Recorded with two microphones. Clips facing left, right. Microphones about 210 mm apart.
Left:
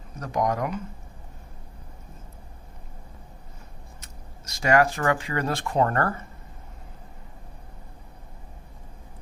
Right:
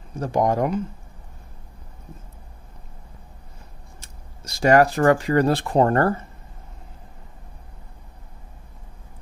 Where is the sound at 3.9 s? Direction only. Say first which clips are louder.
Left 1 dB; 30° right (ahead or behind).